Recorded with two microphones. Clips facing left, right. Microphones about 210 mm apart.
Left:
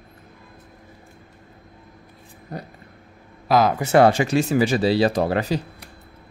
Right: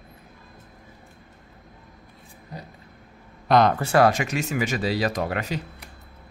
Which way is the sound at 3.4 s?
5° left (ahead or behind).